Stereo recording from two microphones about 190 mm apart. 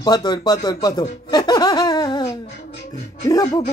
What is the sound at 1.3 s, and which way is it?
Laughter, 20° left (ahead or behind).